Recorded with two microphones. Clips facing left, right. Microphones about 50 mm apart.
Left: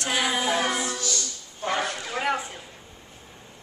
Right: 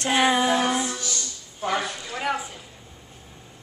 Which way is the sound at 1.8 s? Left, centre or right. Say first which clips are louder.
Left 1 dB; left.